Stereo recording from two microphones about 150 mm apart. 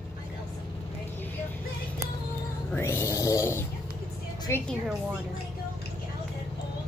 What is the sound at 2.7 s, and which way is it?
A woman's voice, 15° left (ahead or behind).